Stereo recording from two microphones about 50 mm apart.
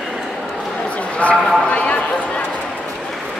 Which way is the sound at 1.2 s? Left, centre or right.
Left.